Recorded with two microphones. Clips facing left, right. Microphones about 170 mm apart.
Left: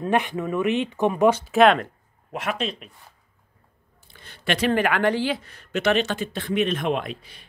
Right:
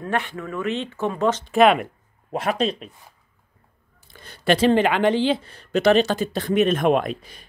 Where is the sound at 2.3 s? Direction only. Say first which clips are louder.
Right 5 dB; 35° right (ahead or behind).